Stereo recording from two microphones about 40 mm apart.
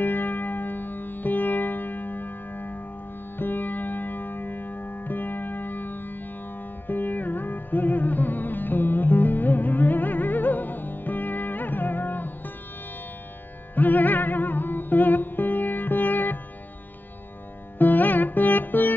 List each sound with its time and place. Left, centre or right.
0.0 s music: left
13.7 s music: left
17.7 s music: left